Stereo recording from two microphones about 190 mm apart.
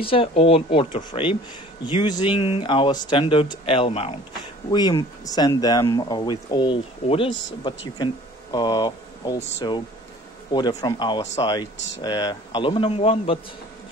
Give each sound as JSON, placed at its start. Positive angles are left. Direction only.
{"t": 0.0, "sound": "speech", "side_deg": 30}